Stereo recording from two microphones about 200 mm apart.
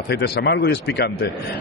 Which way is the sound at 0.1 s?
55° left (ahead or behind).